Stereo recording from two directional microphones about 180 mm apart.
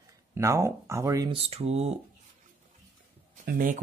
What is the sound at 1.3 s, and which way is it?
Speech, 35° right (ahead or behind).